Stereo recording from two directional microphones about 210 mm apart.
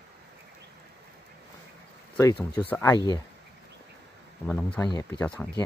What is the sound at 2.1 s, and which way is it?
Speech, 10° left (ahead or behind).